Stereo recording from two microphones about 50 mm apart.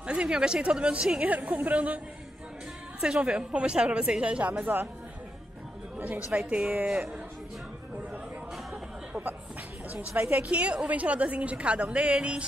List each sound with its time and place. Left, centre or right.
0.0 s a woman's voice: centre
1.2 s a woman's voice: right
3.0 s a woman's voice: centre; by 4.8 s right
6.0 s a woman's voice: right
10.3 s a woman's voice: right